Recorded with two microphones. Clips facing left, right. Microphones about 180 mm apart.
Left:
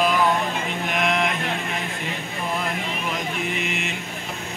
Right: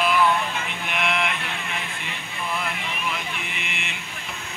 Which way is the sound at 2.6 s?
40° left (ahead or behind).